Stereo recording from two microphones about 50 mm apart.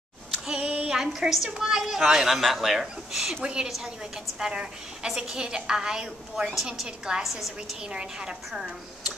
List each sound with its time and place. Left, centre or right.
0.6 s a sound: right
0.9 s a woman's voice: centre
7.9 s a woman's voice: centre